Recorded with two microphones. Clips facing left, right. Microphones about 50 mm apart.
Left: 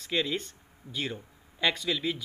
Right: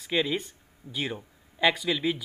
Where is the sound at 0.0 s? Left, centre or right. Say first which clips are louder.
Right 3 dB; centre.